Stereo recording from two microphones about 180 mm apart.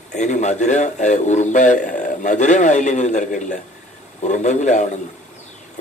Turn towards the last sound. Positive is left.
turn(degrees=40)  # may be behind; listen again after turning